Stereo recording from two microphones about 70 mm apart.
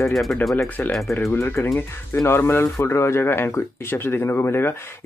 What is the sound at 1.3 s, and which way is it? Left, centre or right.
Speech, left.